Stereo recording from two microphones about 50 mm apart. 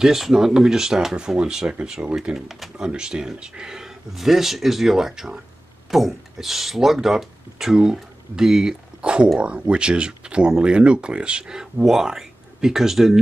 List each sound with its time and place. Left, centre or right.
0.0 s speech: centre
2.8 s speech: centre